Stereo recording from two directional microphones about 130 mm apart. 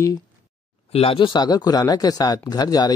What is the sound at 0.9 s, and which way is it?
Speech, 50° left (ahead or behind).